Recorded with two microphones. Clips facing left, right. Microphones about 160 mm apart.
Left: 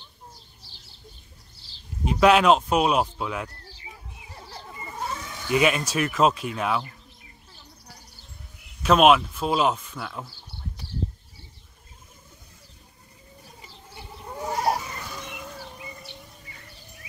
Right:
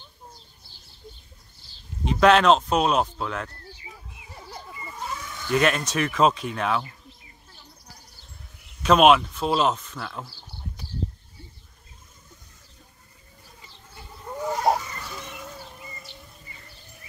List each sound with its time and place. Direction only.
2.0 s speech: 5° left (ahead or behind)
4.7 s a sound: 40° left (ahead or behind)
5.5 s speech: 5° left (ahead or behind)
8.8 s speech: centre (ahead or behind)
13.6 s chicken: 20° left (ahead or behind)
15.0 s vehicle: 5° left (ahead or behind)
15.7 s music: centre (ahead or behind)
16.2 s a sound: centre (ahead or behind)